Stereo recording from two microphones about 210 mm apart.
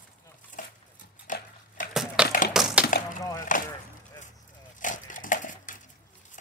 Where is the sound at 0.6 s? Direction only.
40° left (ahead or behind).